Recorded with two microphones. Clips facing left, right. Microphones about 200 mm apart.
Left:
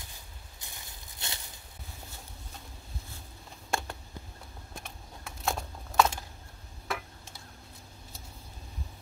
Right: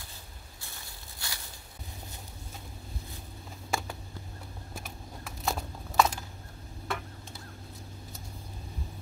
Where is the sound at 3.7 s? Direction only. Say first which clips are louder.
Even; 5° right (ahead or behind).